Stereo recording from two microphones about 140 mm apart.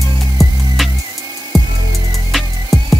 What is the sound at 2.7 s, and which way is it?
Music, centre (ahead or behind).